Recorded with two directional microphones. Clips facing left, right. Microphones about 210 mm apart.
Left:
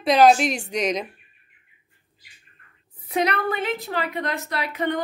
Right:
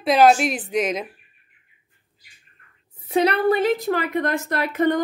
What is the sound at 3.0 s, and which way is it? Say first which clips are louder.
A woman's voice: right 4 dB; 30° right (ahead or behind).